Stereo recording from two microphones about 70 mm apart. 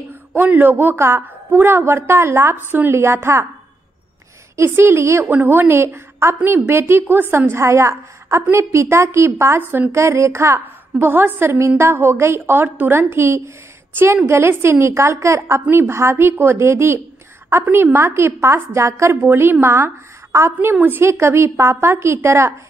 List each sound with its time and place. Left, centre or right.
0.4 s a woman's voice: right
2.5 s a woman's voice: right
4.6 s a woman's voice: right
5.2 s a woman's voice: right
9.9 s a woman's voice: right